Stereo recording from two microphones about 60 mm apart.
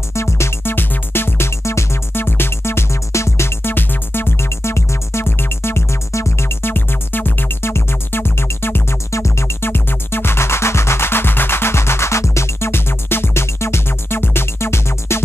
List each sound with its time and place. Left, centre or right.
0.1 s music: left
9.1 s music: left